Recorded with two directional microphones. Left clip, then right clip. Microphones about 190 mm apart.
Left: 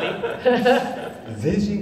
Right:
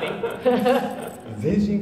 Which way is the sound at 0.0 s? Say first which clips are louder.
Left 2 dB; 40° right (ahead or behind).